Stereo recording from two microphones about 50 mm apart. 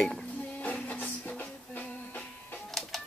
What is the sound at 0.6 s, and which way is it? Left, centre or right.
Music, left.